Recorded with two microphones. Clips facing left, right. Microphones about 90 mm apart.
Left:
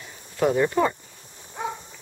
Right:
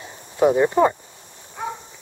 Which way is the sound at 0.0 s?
25° right (ahead or behind).